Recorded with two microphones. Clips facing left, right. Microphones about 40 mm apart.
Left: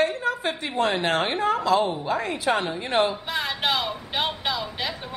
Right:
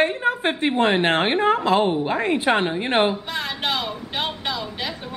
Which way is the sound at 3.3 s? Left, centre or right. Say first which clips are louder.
Even; centre.